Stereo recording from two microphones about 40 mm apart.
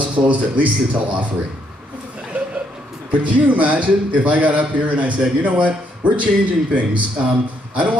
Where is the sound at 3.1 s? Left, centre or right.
Right.